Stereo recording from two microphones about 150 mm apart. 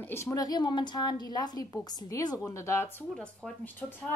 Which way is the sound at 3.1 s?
5° left (ahead or behind).